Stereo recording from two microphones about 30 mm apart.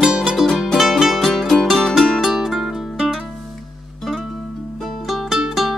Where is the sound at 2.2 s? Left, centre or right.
Centre.